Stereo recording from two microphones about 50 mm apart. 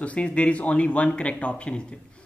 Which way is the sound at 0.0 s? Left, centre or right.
Left.